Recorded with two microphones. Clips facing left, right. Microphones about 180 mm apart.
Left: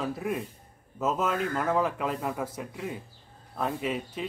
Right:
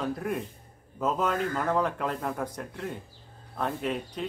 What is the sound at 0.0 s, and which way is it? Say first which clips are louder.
A man's voice: even; 5° left (ahead or behind).